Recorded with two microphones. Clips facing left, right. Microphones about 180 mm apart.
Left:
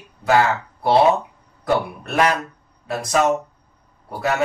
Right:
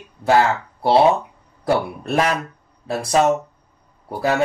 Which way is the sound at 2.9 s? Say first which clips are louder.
Right 2 dB; 30° right (ahead or behind).